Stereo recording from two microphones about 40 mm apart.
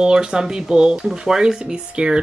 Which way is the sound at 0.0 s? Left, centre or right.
Centre.